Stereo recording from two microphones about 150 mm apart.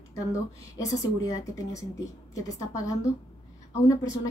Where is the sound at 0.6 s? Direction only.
20° left (ahead or behind).